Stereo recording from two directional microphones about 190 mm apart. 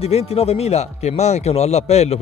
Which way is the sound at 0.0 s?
30° left (ahead or behind).